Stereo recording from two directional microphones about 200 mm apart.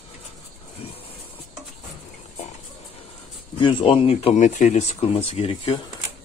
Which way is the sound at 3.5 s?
25° left (ahead or behind).